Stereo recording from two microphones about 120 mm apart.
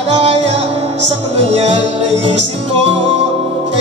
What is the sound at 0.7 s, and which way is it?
Music, 60° right (ahead or behind).